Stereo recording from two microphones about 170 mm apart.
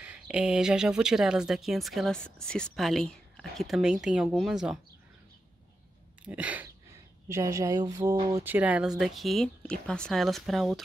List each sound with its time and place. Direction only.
0.0 s speech: 5° right (ahead or behind)
6.2 s speech: 10° right (ahead or behind)
8.5 s speech: 10° right (ahead or behind)